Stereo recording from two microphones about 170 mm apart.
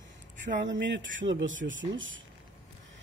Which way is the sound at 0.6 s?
90° right.